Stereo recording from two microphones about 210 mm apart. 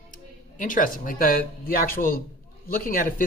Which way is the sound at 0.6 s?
40° left (ahead or behind).